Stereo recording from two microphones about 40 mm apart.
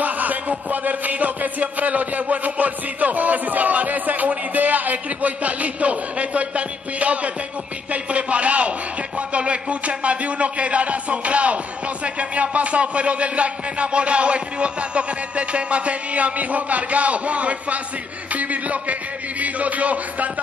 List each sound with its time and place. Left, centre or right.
0.0 s a man's voice: right